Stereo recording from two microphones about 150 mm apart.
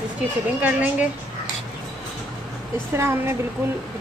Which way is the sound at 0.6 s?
10° right (ahead or behind).